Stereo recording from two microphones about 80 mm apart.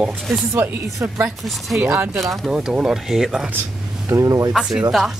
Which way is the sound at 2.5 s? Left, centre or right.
Centre.